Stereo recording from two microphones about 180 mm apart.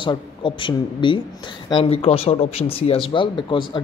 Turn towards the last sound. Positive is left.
turn(degrees=25)  # may be behind; listen again after turning